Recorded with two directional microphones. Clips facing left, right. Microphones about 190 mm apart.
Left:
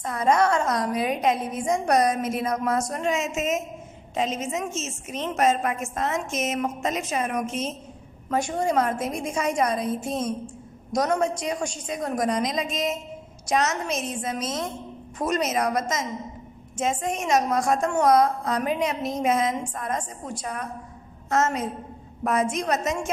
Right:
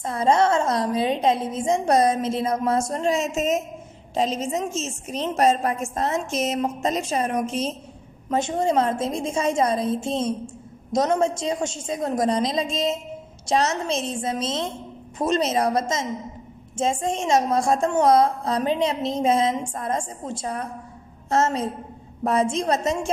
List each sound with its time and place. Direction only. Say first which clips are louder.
0.0 s a woman's voice: right 2 dB; 30° right (ahead or behind)
8.3 s a woman's voice: right 2 dB; 20° right (ahead or behind)